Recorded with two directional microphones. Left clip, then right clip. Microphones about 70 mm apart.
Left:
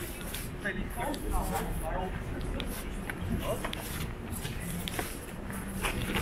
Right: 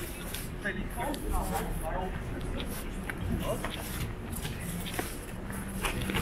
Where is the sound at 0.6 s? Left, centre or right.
Right.